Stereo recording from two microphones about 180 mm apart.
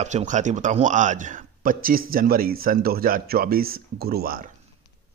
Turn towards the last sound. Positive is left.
turn(degrees=-55)  # may be behind; listen again after turning